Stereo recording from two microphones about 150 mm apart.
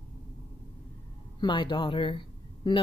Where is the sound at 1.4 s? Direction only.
30° left (ahead or behind).